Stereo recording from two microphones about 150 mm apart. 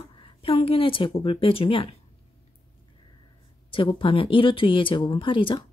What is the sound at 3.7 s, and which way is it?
Speech, 35° left (ahead or behind).